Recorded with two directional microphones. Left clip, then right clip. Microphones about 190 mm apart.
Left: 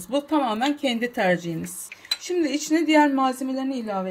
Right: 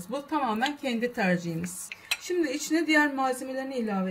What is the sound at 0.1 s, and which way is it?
A woman's voice, 40° left (ahead or behind).